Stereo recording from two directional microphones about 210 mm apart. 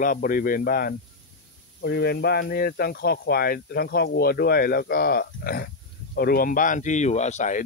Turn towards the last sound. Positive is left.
turn(degrees=35)  # may be behind; listen again after turning